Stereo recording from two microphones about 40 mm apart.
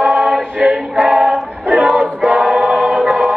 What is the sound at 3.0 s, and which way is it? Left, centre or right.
Choir, centre.